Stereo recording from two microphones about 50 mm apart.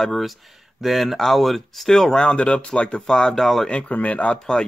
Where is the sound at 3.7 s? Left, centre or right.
Left.